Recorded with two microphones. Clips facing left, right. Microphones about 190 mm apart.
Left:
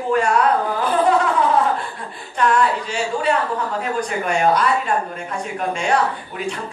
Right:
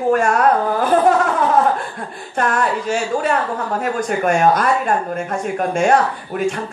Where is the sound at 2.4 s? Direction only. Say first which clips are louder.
Left 1 dB; 50° right (ahead or behind).